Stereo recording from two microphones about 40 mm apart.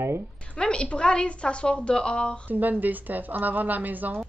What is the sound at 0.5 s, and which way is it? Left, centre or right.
A woman's voice, left.